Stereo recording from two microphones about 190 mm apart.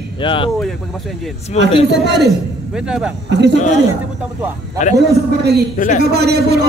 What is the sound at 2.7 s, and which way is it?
Speech, 5° right (ahead or behind).